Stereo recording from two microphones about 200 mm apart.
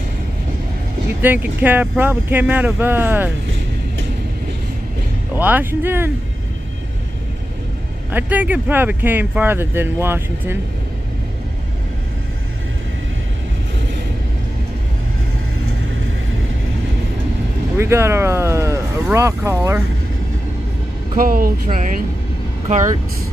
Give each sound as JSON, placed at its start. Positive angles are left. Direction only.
{"t": 1.2, "sound": "speech", "side_deg": -10}
{"t": 5.3, "sound": "speech", "side_deg": -10}
{"t": 8.1, "sound": "speech", "side_deg": -10}
{"t": 17.7, "sound": "speech", "side_deg": -15}
{"t": 21.2, "sound": "speech", "side_deg": -45}